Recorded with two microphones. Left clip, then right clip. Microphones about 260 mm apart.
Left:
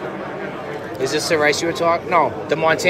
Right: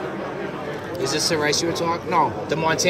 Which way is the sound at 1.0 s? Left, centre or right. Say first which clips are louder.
Left 4 dB; centre.